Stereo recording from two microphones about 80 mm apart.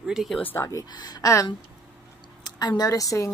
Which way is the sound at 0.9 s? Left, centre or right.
Left.